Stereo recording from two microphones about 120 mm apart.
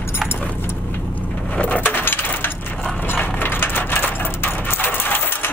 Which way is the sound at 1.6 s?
15° left (ahead or behind).